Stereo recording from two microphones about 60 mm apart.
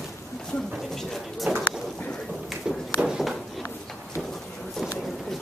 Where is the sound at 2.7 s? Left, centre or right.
Centre.